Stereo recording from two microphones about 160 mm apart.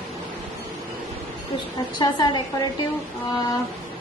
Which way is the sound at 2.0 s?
25° left (ahead or behind).